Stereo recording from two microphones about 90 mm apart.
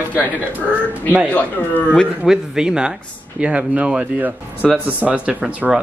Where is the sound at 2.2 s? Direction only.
5° right (ahead or behind).